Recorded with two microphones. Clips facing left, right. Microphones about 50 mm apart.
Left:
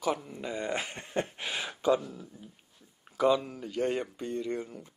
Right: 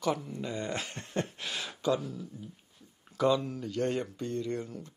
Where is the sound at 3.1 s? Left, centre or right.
Centre.